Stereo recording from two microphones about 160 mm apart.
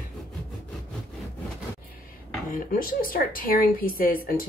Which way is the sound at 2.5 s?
65° left (ahead or behind).